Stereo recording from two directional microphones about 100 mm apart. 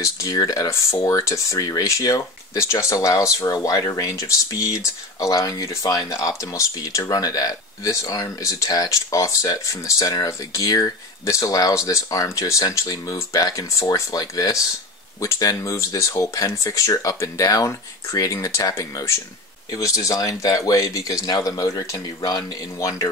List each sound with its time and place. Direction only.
0.0 s speech: 35° left (ahead or behind)